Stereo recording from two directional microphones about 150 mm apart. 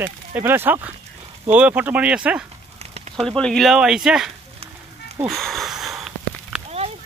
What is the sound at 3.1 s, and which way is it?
Speech, 5° left (ahead or behind).